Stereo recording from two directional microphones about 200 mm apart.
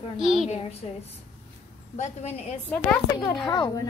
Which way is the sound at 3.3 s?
20° left (ahead or behind).